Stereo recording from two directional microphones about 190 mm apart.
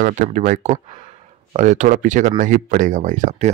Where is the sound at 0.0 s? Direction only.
45° right (ahead or behind).